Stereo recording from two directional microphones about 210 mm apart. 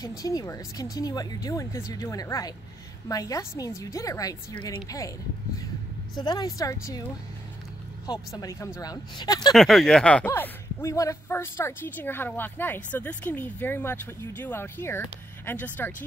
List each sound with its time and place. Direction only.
0.0 s speech: 15° left (ahead or behind)
6.1 s speech: 20° left (ahead or behind)
8.1 s speech: 15° left (ahead or behind)
9.5 s speech: centre (ahead or behind)